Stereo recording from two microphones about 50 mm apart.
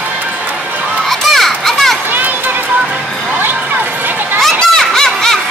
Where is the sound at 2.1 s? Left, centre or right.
Right.